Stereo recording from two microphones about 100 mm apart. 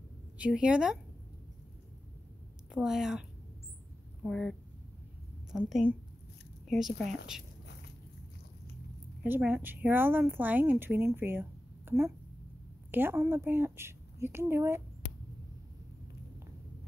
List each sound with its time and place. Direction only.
0.4 s speech: 10° right (ahead or behind)
2.7 s a woman's voice: 5° right (ahead or behind)
9.4 s speech: 15° right (ahead or behind)